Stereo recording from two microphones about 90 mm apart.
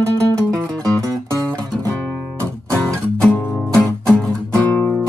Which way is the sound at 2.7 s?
10° left (ahead or behind).